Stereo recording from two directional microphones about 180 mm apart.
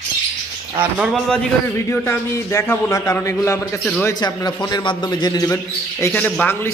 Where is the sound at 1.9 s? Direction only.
15° left (ahead or behind).